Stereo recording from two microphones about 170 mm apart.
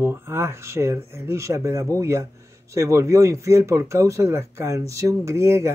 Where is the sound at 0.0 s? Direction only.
15° right (ahead or behind).